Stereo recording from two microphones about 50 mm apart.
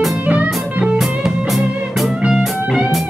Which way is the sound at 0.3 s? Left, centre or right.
Right.